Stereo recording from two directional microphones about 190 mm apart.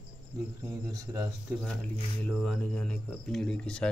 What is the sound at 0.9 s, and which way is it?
Speech, 15° right (ahead or behind).